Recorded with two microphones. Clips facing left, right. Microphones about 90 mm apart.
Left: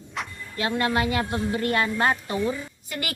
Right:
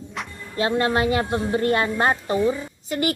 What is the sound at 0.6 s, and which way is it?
A woman's voice, 30° right (ahead or behind).